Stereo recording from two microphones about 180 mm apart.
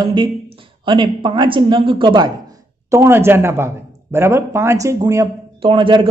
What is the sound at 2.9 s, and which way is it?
Speech, 15° right (ahead or behind).